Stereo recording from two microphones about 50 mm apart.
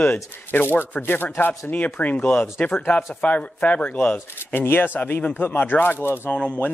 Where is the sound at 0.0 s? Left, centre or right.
Left.